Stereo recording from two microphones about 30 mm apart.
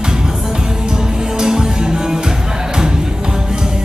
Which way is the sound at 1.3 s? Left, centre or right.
Centre.